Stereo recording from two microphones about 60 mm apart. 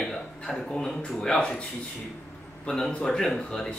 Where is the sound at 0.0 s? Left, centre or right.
Centre.